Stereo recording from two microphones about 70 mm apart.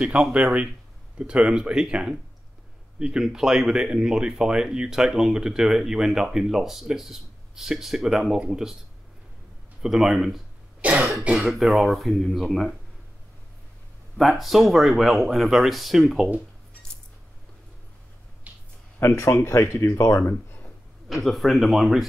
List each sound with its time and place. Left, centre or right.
0.0 s speech: centre
9.8 s speech: centre
10.8 s cough: centre
11.3 s speech: centre
14.1 s speech: centre
18.5 s a sound: right
18.9 s speech: left
21.1 s speech: centre